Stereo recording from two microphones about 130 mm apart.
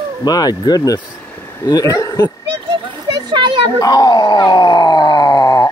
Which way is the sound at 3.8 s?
30° left (ahead or behind).